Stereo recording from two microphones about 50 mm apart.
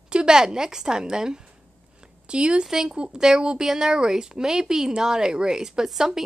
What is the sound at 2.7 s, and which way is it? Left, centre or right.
Speech, centre.